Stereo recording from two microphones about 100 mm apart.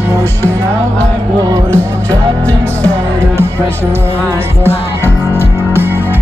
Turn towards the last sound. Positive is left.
turn(degrees=20)  # may be behind; listen again after turning